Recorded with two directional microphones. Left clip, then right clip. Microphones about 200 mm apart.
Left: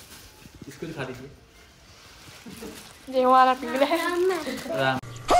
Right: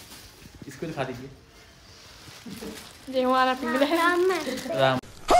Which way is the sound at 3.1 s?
5° right (ahead or behind).